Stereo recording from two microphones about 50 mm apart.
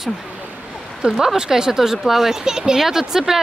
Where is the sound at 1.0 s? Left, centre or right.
Right.